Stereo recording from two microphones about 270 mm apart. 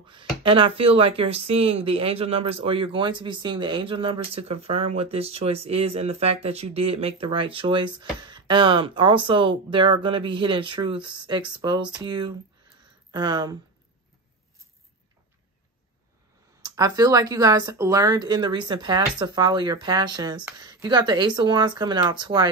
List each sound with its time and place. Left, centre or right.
0.0 s speech: centre
16.6 s speech: centre